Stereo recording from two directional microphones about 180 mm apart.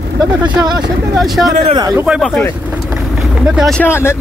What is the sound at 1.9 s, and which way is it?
Speech, 5° right (ahead or behind).